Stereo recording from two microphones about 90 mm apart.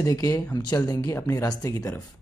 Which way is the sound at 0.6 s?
50° left (ahead or behind).